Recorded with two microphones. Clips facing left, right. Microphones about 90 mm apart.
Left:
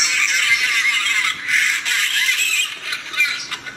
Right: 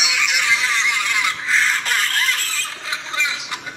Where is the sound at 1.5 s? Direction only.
35° right (ahead or behind).